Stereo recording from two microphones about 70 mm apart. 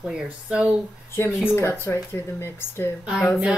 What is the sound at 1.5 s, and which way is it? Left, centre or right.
Speech, left.